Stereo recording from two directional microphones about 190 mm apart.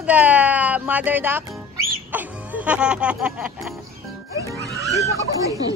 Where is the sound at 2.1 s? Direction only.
10° right (ahead or behind).